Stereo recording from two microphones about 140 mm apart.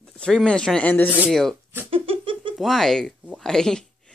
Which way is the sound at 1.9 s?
40° right (ahead or behind).